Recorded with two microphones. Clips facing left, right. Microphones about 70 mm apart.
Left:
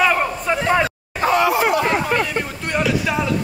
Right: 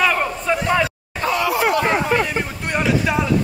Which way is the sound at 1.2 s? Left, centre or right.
Left.